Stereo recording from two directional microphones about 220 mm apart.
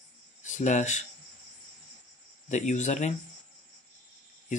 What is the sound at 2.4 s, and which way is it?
Speech, 35° left (ahead or behind).